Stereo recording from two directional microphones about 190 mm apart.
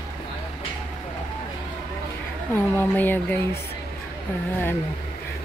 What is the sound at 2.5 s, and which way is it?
Speech, 10° left (ahead or behind).